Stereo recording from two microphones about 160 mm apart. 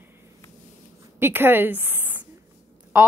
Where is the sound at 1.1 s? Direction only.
15° right (ahead or behind).